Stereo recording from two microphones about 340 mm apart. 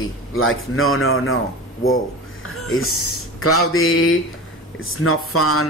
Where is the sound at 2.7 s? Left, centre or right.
Left.